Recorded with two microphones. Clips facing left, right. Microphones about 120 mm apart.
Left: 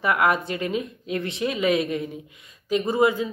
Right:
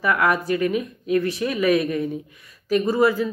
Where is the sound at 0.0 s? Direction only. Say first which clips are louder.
Right 1 dB; 25° left (ahead or behind).